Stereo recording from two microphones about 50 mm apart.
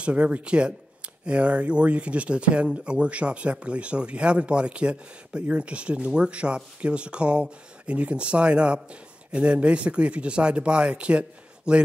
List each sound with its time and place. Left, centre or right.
0.0 s speech: right